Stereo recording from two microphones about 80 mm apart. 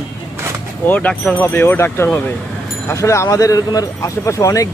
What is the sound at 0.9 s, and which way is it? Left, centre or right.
Speech, centre.